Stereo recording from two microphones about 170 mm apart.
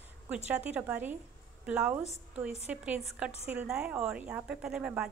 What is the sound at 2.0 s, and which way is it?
Speech, 40° left (ahead or behind).